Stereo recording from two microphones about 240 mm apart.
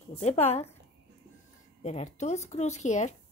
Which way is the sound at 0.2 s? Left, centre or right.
Left.